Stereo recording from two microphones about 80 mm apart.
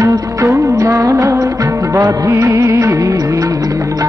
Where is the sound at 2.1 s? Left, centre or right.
Right.